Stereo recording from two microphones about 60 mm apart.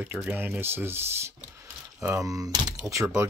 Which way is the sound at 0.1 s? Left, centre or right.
Centre.